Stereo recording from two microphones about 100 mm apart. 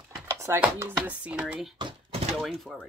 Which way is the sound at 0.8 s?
15° right (ahead or behind).